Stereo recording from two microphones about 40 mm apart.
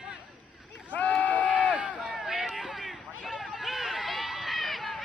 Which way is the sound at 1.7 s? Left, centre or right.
Right.